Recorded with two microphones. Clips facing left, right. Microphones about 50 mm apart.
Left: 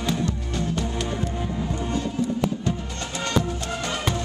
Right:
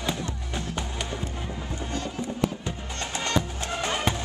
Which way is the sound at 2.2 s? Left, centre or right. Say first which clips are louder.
Left 4 dB; right.